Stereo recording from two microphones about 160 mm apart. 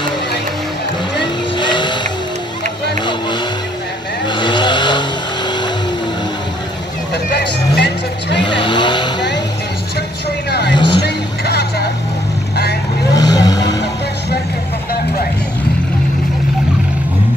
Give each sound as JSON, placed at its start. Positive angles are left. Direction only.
{"t": 1.2, "sound": "vehicle", "side_deg": 30}
{"t": 4.3, "sound": "vehicle", "side_deg": 30}
{"t": 7.3, "sound": "vehicle", "side_deg": 90}
{"t": 8.5, "sound": "vehicle", "side_deg": 30}
{"t": 10.5, "sound": "vehicle", "side_deg": 90}
{"t": 13.1, "sound": "vehicle", "side_deg": 25}